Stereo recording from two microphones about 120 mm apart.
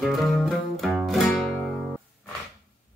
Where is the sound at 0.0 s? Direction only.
Centre (ahead or behind).